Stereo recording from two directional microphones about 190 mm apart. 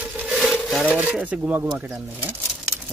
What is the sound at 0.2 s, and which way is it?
Speech, 5° right (ahead or behind).